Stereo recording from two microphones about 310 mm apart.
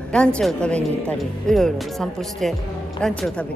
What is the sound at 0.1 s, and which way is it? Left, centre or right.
Speech, centre.